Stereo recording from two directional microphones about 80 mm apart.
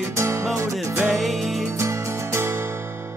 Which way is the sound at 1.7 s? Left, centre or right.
Right.